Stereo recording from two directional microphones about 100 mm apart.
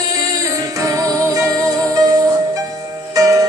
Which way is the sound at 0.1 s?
35° right (ahead or behind).